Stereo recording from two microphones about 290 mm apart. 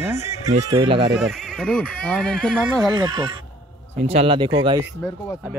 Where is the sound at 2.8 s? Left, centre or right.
Centre.